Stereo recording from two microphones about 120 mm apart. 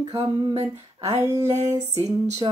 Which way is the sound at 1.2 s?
30° right (ahead or behind).